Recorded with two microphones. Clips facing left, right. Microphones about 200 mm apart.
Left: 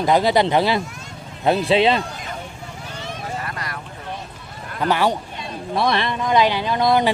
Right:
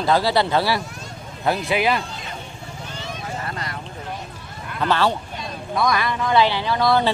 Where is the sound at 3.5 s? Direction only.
25° right (ahead or behind).